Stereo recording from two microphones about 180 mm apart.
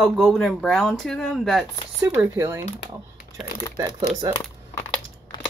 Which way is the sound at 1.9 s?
10° right (ahead or behind).